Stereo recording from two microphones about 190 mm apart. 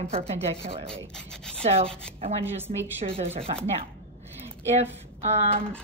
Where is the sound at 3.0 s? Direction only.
30° right (ahead or behind).